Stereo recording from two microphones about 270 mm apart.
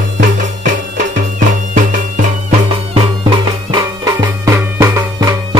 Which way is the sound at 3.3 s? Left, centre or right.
Centre.